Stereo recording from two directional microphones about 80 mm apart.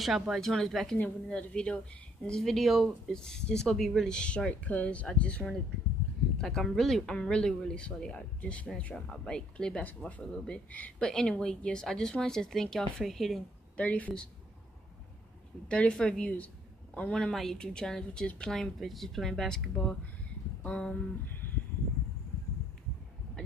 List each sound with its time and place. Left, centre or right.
0.0 s speech: centre
0.9 s speech: left
6.3 s speech: centre
13.7 s speech: centre
15.7 s speech: centre